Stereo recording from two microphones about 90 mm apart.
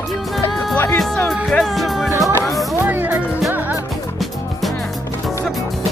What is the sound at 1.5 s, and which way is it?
Music, 5° left (ahead or behind).